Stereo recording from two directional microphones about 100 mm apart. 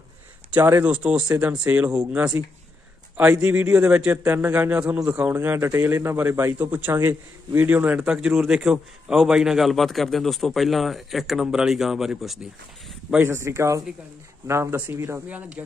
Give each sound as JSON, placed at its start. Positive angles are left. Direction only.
{"t": 0.5, "sound": "speech", "side_deg": -20}
{"t": 0.8, "sound": "speech", "side_deg": -10}
{"t": 3.7, "sound": "a man's voice", "side_deg": -15}
{"t": 13.2, "sound": "a man's voice", "side_deg": -30}